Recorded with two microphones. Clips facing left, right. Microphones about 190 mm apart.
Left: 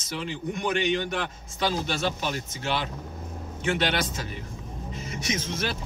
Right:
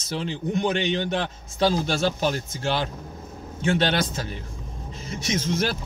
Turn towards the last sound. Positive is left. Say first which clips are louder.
# right 5 dB
turn(degrees=-30)  # may be behind; listen again after turning